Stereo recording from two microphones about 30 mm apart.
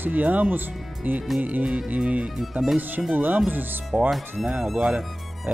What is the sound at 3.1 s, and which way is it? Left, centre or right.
Speech, right.